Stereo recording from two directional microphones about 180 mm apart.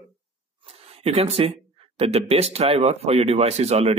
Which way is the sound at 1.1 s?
35° right (ahead or behind).